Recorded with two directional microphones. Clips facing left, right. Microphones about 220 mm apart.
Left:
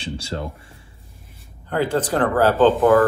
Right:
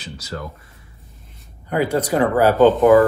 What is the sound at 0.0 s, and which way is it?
Speech, 30° left (ahead or behind).